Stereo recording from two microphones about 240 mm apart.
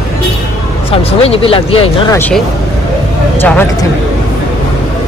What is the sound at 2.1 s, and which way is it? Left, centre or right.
Speech, centre.